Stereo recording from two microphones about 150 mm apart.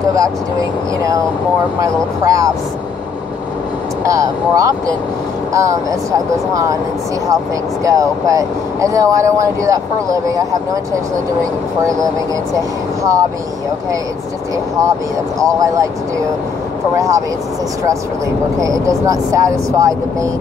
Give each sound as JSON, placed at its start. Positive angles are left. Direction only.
{"t": 0.1, "sound": "speech", "side_deg": -20}
{"t": 4.0, "sound": "speech", "side_deg": -20}
{"t": 7.8, "sound": "speech", "side_deg": -20}
{"t": 14.8, "sound": "speech", "side_deg": -20}
{"t": 16.9, "sound": "speech", "side_deg": -20}
{"t": 18.6, "sound": "speech", "side_deg": -20}